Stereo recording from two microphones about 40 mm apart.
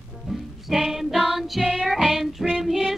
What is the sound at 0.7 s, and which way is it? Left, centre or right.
Speech, centre.